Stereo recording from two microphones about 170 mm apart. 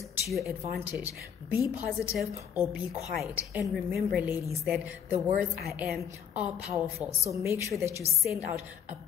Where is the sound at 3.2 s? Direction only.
10° right (ahead or behind).